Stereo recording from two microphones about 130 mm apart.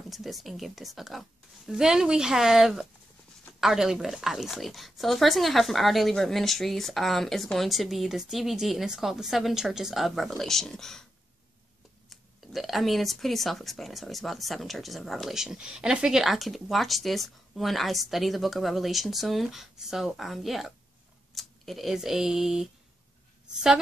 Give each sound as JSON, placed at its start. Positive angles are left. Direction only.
{"t": 0.1, "sound": "speech", "side_deg": 0}
{"t": 12.1, "sound": "speech", "side_deg": 0}